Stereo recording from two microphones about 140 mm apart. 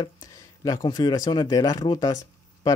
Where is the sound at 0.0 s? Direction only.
25° left (ahead or behind).